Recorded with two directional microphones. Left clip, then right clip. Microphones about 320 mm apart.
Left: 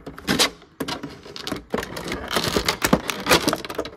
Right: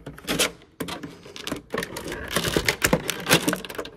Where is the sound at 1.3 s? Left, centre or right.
Left.